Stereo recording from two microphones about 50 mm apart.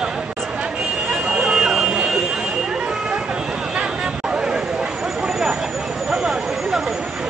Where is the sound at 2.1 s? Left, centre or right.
Centre.